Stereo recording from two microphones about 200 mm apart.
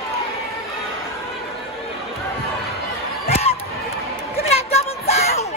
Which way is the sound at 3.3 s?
30° left (ahead or behind).